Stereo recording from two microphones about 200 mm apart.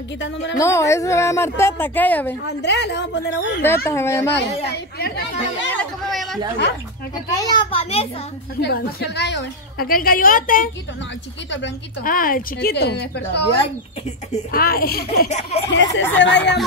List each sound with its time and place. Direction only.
0.2 s a woman's voice: 65° left (ahead or behind)
0.6 s a woman's voice: 15° left (ahead or behind)
2.6 s a woman's voice: 60° left (ahead or behind)
3.6 s a woman's voice: 15° left (ahead or behind)
4.6 s a woman's voice: 55° left (ahead or behind)
5.7 s music: 5° left (ahead or behind)
7.3 s a child's voice: 20° left (ahead or behind)
8.5 s a woman's voice: 55° left (ahead or behind)
12.0 s a woman's voice: 45° left (ahead or behind)
14.5 s a woman's voice: 50° left (ahead or behind)
15.2 s a sound: 35° left (ahead or behind)
15.7 s a woman's voice: 65° left (ahead or behind)